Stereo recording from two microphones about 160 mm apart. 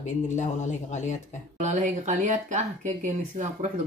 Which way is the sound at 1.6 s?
50° right (ahead or behind).